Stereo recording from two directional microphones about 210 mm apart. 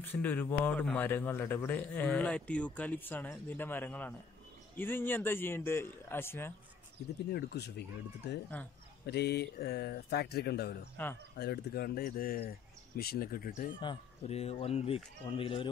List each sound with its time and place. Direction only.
0.0 s speech: 10° left (ahead or behind)
7.2 s speech: 50° left (ahead or behind)
8.5 s speech: 10° left (ahead or behind)
9.0 s speech: 50° left (ahead or behind)
11.0 s speech: 10° left (ahead or behind)
11.3 s speech: 50° left (ahead or behind)
13.7 s speech: 25° left (ahead or behind)